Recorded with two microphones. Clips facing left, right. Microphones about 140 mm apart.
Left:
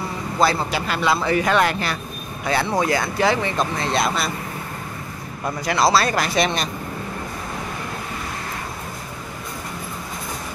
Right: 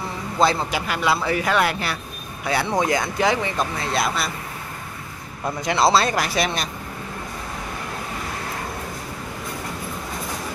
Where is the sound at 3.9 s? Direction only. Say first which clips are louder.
Left 1 dB; centre (ahead or behind).